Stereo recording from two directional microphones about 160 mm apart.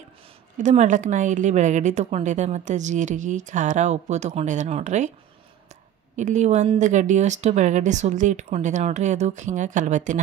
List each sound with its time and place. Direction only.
0.6 s a woman's voice: 50° right (ahead or behind)
6.1 s a woman's voice: 50° right (ahead or behind)